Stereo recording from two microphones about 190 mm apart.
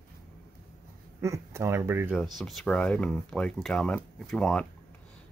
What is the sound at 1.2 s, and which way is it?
Speech, 15° right (ahead or behind).